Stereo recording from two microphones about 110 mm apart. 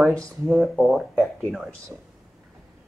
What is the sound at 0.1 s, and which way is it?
Speech, centre (ahead or behind).